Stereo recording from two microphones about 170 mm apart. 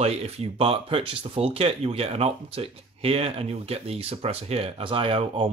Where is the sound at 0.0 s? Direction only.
35° right (ahead or behind).